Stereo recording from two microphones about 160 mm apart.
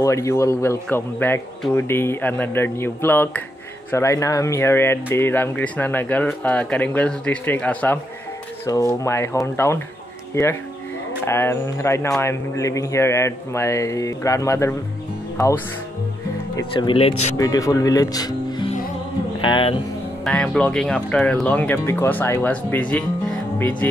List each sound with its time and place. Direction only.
0.0 s speech: 20° left (ahead or behind)
8.6 s speech: 20° left (ahead or behind)
16.7 s speech: 35° left (ahead or behind)
17.4 s speech: 20° left (ahead or behind)
20.2 s speech: 5° left (ahead or behind)